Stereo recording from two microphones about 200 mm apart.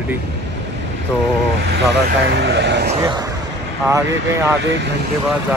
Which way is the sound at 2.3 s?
60° right (ahead or behind).